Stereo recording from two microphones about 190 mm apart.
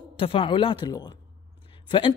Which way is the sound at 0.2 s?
30° left (ahead or behind).